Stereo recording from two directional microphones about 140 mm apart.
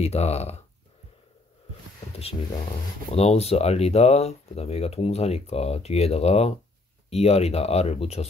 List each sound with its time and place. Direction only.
0.0 s speech: 50° left (ahead or behind)
3.1 s speech: 45° left (ahead or behind)